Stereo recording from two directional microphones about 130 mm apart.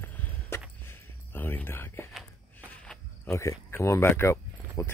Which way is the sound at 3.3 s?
20° left (ahead or behind).